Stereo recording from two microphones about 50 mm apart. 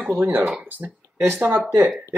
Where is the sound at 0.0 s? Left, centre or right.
Right.